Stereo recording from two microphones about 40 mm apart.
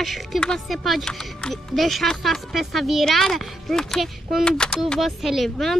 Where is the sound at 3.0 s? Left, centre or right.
Centre.